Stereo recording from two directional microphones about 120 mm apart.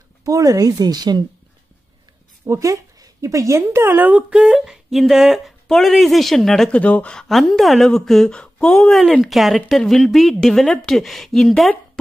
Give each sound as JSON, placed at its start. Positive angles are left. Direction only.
{"t": 0.2, "sound": "speech", "side_deg": -30}
{"t": 2.4, "sound": "a woman's voice", "side_deg": -25}